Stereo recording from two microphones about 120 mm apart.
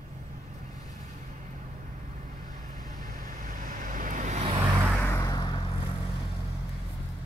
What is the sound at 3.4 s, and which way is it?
Vehicle, 90° right.